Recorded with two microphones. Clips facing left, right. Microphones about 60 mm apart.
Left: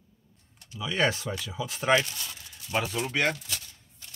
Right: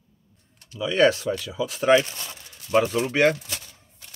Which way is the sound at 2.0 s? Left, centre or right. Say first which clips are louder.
Right 5 dB; right.